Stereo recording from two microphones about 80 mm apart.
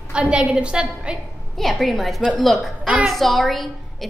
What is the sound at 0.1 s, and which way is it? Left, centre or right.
Speech, centre.